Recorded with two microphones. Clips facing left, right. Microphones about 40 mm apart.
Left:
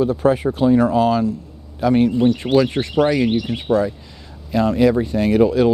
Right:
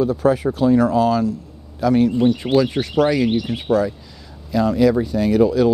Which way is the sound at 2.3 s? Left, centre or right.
Left.